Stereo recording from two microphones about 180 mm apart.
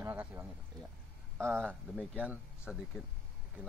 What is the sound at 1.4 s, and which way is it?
Speech, 10° right (ahead or behind).